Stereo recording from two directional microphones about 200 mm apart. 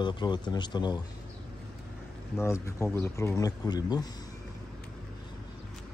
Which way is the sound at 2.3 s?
15° left (ahead or behind).